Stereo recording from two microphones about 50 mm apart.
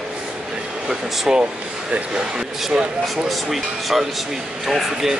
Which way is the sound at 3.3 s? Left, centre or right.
Centre.